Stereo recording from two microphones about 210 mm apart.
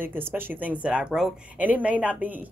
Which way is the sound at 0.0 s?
10° right (ahead or behind).